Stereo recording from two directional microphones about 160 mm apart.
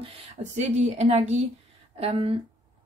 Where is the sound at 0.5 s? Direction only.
45° right (ahead or behind).